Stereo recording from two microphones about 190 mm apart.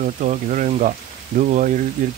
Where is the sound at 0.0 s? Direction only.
40° right (ahead or behind).